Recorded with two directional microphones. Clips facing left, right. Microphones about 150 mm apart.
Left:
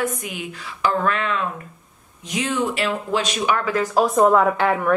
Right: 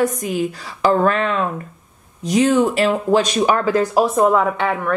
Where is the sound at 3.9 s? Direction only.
5° right (ahead or behind).